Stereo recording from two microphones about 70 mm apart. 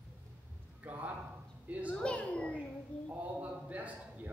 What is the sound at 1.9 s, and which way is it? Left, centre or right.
Speech, centre.